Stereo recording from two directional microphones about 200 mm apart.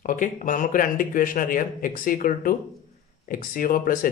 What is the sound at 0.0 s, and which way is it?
A man's voice, 40° left (ahead or behind).